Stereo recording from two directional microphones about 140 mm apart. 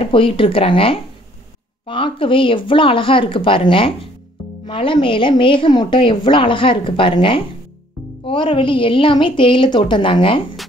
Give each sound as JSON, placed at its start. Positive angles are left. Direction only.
{"t": 0.0, "sound": "a woman's voice", "side_deg": 40}